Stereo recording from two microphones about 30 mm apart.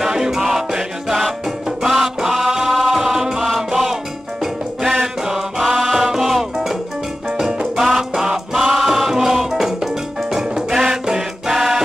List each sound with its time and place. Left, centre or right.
0.0 s music: centre
5.0 s chant: centre
5.9 s music: centre